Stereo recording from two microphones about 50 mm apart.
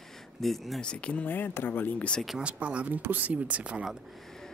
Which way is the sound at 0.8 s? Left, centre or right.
Left.